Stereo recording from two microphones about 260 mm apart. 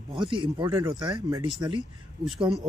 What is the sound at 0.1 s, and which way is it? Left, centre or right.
Speech, centre.